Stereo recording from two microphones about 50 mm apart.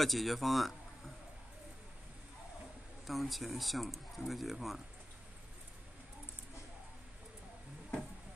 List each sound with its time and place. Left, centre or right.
0.0 s speech: centre
3.1 s speech: centre